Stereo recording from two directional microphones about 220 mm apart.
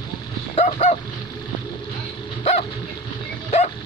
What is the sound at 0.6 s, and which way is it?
Dog, 35° left (ahead or behind).